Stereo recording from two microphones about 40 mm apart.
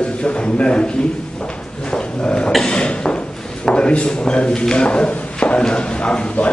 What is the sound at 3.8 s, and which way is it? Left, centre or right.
Speech, left.